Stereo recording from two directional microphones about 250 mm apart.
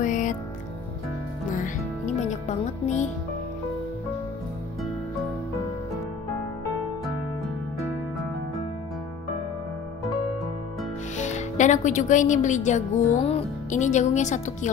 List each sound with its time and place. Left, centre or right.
0.0 s music: left
2.1 s speech: left
11.1 s speech: left